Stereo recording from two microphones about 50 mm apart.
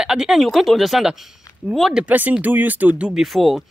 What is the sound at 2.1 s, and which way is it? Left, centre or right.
Speech, right.